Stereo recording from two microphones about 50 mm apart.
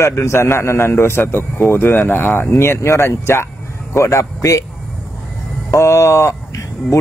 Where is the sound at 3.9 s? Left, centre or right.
Left.